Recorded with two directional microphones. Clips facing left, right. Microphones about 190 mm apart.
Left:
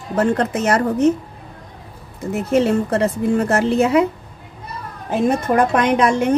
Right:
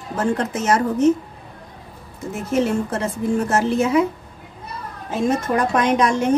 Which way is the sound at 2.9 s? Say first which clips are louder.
Left 4 dB; 65° left (ahead or behind).